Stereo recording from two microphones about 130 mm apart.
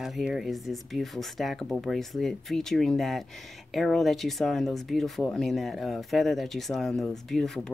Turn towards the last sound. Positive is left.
turn(degrees=0)  # may be behind; listen again after turning